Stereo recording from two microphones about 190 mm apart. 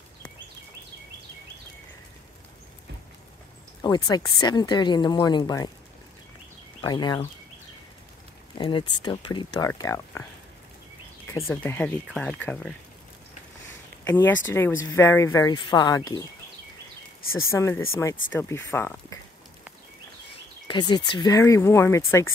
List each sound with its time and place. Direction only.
3.8 s speech: 20° left (ahead or behind)
6.8 s speech: 20° left (ahead or behind)
8.5 s speech: 25° left (ahead or behind)
11.3 s speech: 15° left (ahead or behind)
14.0 s speech: 10° left (ahead or behind)
17.5 s speech: 15° left (ahead or behind)
20.6 s speech: 25° left (ahead or behind)